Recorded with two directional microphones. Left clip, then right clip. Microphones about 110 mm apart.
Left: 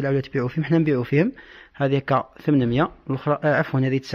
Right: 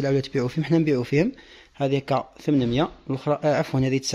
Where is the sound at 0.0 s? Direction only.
20° right (ahead or behind).